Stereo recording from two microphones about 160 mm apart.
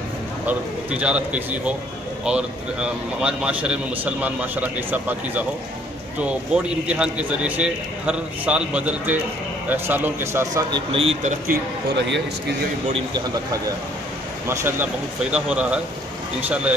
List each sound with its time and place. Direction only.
0.5 s a man's voice: 10° right (ahead or behind)
10.9 s a man's voice: 35° right (ahead or behind)
11.4 s a man's voice: 90° right
12.9 s speech: 25° right (ahead or behind)
14.5 s a man's voice: 15° right (ahead or behind)